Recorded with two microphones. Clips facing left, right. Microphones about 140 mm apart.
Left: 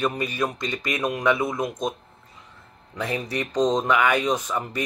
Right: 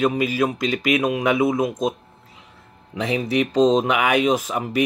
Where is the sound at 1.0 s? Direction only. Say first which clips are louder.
Even; 10° right (ahead or behind).